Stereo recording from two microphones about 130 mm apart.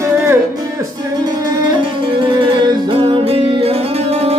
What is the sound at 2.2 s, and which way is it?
Music, 40° right (ahead or behind).